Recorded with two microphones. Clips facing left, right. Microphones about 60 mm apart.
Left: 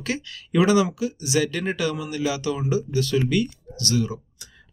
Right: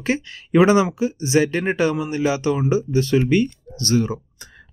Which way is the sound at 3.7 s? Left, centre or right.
Right.